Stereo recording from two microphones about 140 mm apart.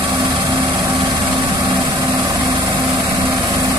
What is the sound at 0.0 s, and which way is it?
Vehicle, 35° right (ahead or behind).